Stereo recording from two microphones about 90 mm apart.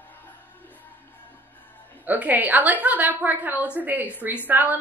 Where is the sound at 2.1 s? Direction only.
20° right (ahead or behind).